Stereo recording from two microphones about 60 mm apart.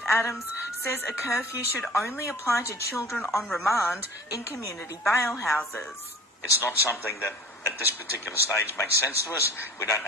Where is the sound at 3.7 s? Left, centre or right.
Left.